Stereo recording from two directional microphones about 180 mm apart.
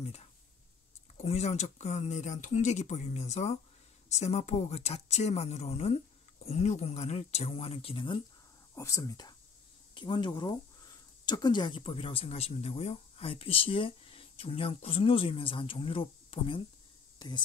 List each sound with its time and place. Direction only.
0.0 s a sound: 35° left (ahead or behind)
1.1 s speech: 40° left (ahead or behind)
8.7 s speech: 15° left (ahead or behind)